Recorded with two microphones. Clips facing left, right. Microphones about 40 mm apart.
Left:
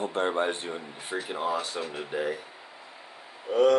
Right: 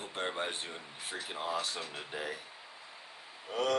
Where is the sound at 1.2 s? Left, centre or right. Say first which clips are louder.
Left 5 dB; centre.